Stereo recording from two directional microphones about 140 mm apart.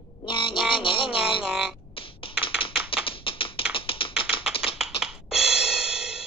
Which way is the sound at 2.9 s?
40° left (ahead or behind).